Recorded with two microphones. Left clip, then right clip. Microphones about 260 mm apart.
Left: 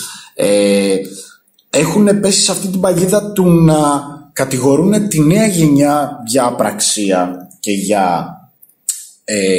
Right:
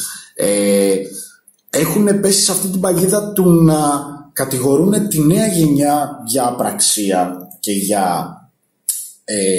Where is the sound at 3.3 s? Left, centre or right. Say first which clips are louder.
Left 1 dB; centre.